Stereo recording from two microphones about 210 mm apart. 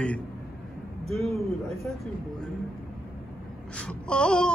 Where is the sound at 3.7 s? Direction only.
5° left (ahead or behind).